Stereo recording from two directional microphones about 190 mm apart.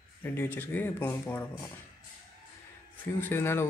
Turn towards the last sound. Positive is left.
turn(degrees=10)  # may be behind; listen again after turning